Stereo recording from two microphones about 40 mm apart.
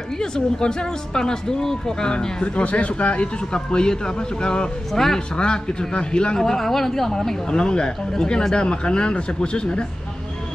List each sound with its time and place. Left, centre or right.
0.2 s speech: centre
4.9 s speech: centre
5.3 s speech: left
6.4 s speech: centre